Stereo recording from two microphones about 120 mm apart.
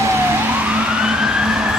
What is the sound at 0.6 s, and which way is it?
Emergency vehicle, 10° right (ahead or behind).